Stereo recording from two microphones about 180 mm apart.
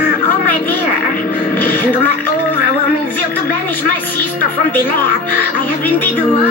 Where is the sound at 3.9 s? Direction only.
10° left (ahead or behind).